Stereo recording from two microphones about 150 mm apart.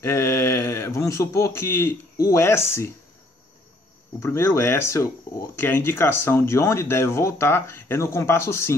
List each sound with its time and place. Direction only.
0.0 s a man's voice: 20° left (ahead or behind)
4.2 s speech: 15° left (ahead or behind)